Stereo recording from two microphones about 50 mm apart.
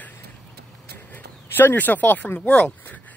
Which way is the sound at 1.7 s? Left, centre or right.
Left.